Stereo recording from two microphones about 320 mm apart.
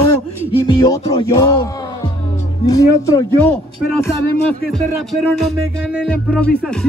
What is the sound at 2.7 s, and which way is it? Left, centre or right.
Music, centre.